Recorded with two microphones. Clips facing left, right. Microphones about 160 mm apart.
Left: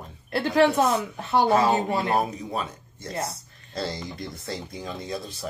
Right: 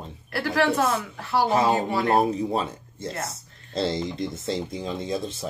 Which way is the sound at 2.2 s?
30° right (ahead or behind).